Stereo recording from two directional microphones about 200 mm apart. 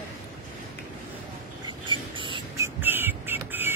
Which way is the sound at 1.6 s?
25° right (ahead or behind).